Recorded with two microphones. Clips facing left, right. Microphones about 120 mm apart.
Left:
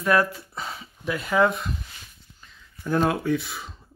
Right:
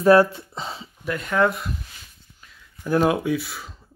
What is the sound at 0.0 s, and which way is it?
Speech, 30° right (ahead or behind).